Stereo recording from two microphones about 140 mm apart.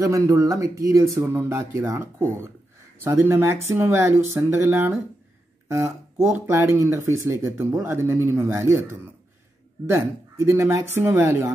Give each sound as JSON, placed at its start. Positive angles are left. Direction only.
{"t": 0.0, "sound": "speech", "side_deg": -25}
{"t": 6.2, "sound": "speech", "side_deg": -20}
{"t": 9.8, "sound": "speech", "side_deg": -20}